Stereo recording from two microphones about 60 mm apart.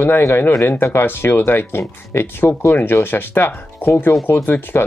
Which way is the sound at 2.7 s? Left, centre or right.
Left.